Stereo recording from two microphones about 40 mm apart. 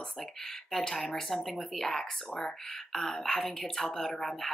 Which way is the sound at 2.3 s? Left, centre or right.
Left.